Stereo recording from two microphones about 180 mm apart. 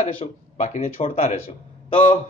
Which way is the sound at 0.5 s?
40° left (ahead or behind).